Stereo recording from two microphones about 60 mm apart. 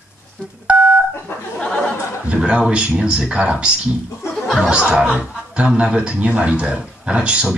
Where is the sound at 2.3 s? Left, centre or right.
Centre.